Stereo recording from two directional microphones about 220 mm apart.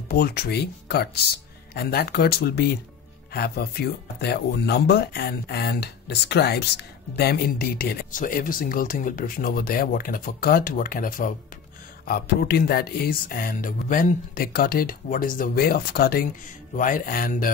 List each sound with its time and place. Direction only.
0.1 s speech: 45° left (ahead or behind)